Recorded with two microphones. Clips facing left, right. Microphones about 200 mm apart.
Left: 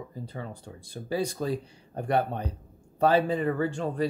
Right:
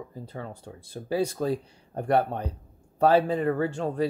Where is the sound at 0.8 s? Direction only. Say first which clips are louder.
Right 2 dB; 5° right (ahead or behind).